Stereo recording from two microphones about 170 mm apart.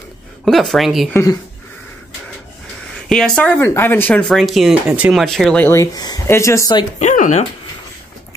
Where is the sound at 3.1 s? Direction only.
5° left (ahead or behind).